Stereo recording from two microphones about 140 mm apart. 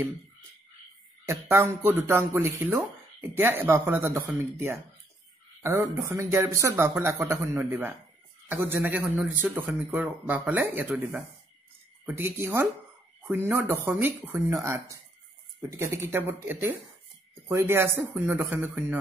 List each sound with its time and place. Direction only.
1.2 s speech: 20° right (ahead or behind)
12.1 s speech: 15° right (ahead or behind)
15.9 s speech: 15° right (ahead or behind)